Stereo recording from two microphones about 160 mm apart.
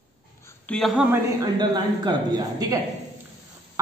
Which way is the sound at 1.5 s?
25° right (ahead or behind).